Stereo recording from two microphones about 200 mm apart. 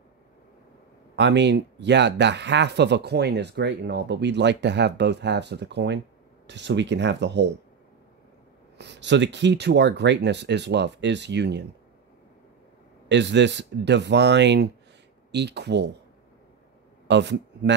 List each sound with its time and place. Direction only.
1.1 s speech: 60° right (ahead or behind)
8.7 s speech: 60° right (ahead or behind)
13.1 s speech: 60° right (ahead or behind)
17.1 s speech: 60° right (ahead or behind)